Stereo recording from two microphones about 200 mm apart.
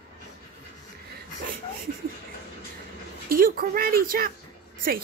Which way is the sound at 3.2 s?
45° right (ahead or behind).